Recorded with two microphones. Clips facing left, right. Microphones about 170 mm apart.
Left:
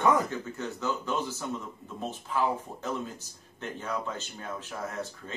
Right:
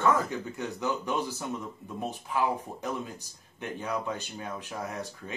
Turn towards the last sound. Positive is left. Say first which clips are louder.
# even
turn(degrees=-15)  # may be behind; listen again after turning